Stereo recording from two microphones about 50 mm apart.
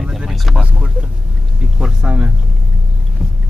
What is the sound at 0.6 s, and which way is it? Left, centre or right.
Speech, right.